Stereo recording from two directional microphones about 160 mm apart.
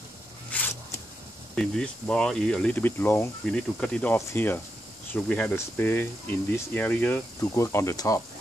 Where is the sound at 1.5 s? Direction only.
5° left (ahead or behind); by 8.2 s 20° left (ahead or behind).